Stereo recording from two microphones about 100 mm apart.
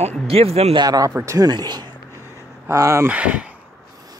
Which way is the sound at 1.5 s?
45° right (ahead or behind).